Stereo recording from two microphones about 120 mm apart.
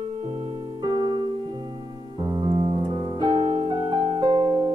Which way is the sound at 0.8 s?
40° right (ahead or behind).